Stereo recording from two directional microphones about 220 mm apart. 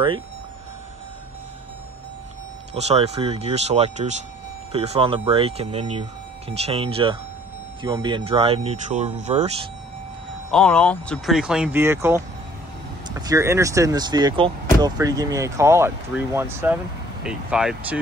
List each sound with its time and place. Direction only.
2.7 s speech: 30° right (ahead or behind)
10.5 s speech: 5° left (ahead or behind); by 12.2 s 10° right (ahead or behind)
13.2 s speech: 15° right (ahead or behind)